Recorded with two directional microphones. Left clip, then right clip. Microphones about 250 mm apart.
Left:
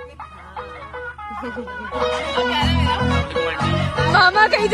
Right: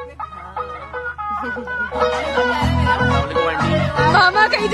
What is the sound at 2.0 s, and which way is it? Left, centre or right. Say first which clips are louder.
Music: right 2 dB; right.